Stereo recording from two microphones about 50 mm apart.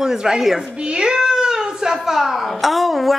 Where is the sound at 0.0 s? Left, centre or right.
Centre.